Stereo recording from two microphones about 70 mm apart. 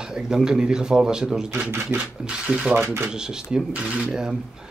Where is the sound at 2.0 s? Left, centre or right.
Centre.